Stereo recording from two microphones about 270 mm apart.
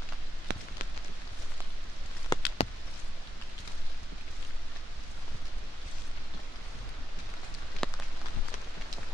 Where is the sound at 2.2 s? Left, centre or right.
Left.